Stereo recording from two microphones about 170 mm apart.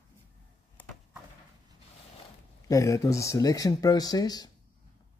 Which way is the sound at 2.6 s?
20° left (ahead or behind).